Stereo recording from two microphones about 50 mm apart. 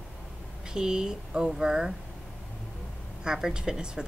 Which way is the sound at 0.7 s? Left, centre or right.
Centre.